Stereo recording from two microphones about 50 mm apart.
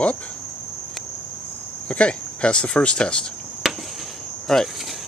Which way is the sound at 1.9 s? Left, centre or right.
Left.